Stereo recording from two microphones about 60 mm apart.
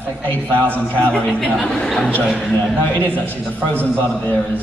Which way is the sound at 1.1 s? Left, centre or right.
Centre.